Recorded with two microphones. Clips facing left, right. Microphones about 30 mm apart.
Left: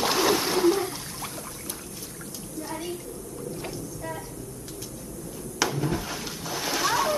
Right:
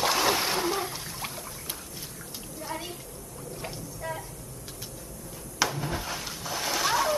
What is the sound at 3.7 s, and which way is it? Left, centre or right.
Vehicle, centre.